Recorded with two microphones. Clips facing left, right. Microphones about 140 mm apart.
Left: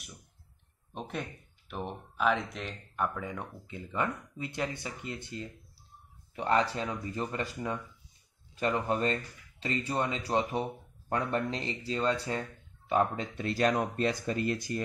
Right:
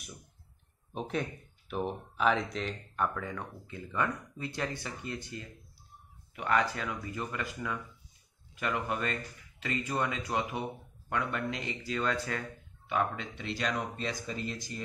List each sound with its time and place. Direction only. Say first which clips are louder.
0.9 s speech: right 4 dB; centre (ahead or behind)
3.3 s speech: even; 15° left (ahead or behind)
12.8 s speech: left 4 dB; 35° left (ahead or behind); by 14.8 s 55° left (ahead or behind)